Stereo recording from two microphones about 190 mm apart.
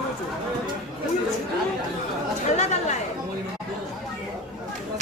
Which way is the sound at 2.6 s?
35° left (ahead or behind).